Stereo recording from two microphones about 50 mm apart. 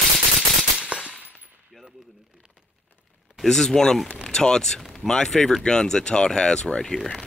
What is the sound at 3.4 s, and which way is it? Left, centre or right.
Speech, centre.